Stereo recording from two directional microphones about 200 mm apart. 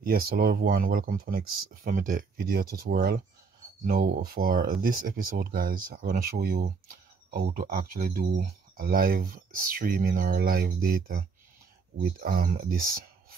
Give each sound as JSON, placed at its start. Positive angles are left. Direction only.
{"t": 0.0, "sound": "speech", "side_deg": -50}